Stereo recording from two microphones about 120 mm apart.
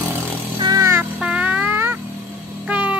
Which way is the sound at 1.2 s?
10° right (ahead or behind).